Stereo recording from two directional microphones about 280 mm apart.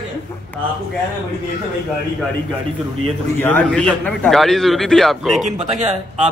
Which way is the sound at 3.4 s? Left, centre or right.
Centre.